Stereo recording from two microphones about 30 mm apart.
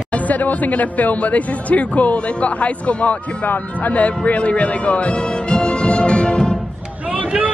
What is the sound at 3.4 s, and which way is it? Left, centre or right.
Speech, left.